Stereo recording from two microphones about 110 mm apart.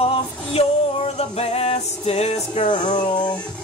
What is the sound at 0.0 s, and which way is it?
Music, 65° left (ahead or behind).